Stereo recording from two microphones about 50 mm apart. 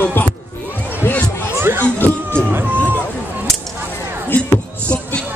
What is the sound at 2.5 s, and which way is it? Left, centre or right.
Run, right.